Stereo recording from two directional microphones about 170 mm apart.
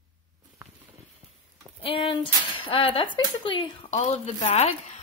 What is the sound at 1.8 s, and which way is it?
Speech, 30° left (ahead or behind).